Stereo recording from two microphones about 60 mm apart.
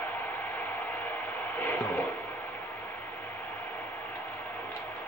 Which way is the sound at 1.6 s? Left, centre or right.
Left.